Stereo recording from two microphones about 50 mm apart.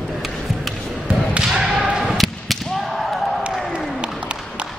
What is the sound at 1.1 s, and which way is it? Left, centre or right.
Thump, right.